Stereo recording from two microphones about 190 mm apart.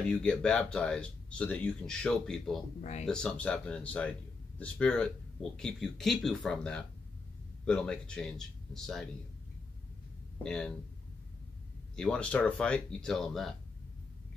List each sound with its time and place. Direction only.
0.1 s speech: 5° left (ahead or behind)
2.8 s speech: 35° left (ahead or behind)
3.1 s speech: 5° left (ahead or behind)
10.4 s speech: 5° left (ahead or behind)
11.9 s speech: 5° left (ahead or behind)